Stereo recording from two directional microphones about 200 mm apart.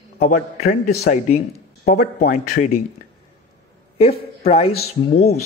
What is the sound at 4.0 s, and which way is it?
Speech, 30° left (ahead or behind).